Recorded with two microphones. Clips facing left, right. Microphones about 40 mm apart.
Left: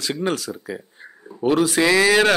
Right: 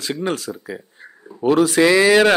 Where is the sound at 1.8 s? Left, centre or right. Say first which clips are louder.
Right 3 dB; centre.